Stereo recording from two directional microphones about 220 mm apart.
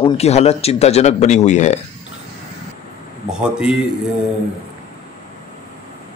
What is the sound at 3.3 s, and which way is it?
Speech, 5° right (ahead or behind).